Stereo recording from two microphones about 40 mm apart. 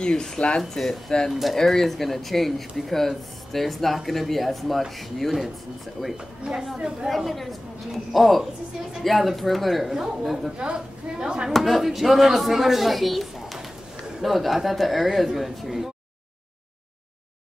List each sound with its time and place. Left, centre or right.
0.0 s speech: centre
0.6 s speech: centre
10.6 s speech: right
11.6 s speech: centre